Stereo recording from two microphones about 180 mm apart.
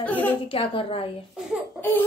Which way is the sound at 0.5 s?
30° left (ahead or behind).